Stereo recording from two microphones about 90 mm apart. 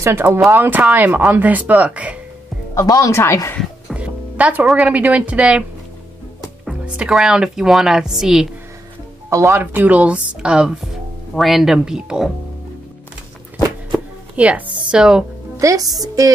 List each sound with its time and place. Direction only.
0.0 s speech: 25° right (ahead or behind)
2.7 s speech: 40° left (ahead or behind)
3.9 s music: 15° right (ahead or behind)
4.7 s speech: 15° right (ahead or behind)
7.0 s speech: 5° right (ahead or behind)
9.3 s speech: 25° right (ahead or behind); by 12.3 s 5° right (ahead or behind)
13.9 s speech: 15° right (ahead or behind)
15.6 s speech: 40° right (ahead or behind)